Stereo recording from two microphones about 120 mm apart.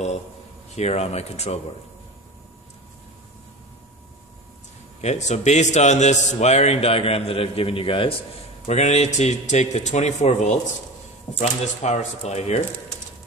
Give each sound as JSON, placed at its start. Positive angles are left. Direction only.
{"t": 0.7, "sound": "a man's voice", "side_deg": 65}
{"t": 5.0, "sound": "a man's voice", "side_deg": 70}
{"t": 8.6, "sound": "speech", "side_deg": 70}
{"t": 11.3, "sound": "speech", "side_deg": 85}